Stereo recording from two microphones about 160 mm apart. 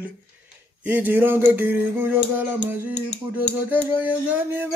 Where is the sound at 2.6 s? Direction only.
45° left (ahead or behind).